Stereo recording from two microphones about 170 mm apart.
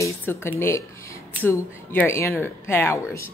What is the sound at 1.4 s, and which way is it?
Speech, 15° left (ahead or behind).